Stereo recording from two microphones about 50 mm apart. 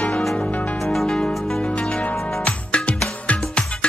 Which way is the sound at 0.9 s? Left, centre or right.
Centre.